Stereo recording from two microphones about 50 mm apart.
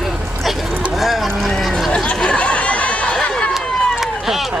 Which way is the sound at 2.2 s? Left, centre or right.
Left.